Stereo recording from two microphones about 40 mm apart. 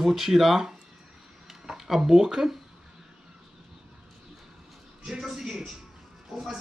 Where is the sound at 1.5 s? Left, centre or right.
Centre.